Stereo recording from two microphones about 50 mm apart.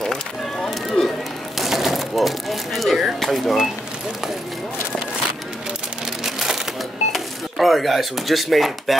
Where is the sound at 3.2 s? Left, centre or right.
Centre.